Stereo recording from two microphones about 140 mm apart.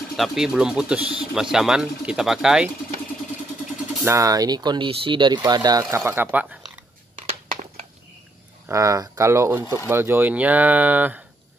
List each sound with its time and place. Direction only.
0.2 s speech: 5° right (ahead or behind)
4.0 s speech: 25° right (ahead or behind)
8.6 s speech: 20° right (ahead or behind)